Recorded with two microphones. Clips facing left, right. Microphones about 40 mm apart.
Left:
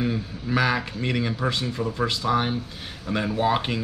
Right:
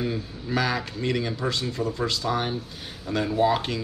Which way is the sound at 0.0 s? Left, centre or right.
Centre.